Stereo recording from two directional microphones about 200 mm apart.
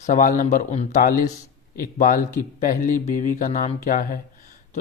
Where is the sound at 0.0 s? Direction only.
40° left (ahead or behind).